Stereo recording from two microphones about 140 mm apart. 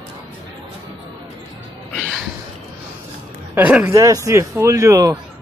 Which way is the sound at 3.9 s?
25° right (ahead or behind).